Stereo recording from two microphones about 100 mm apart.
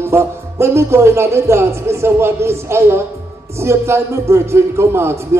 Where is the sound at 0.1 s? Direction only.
25° right (ahead or behind).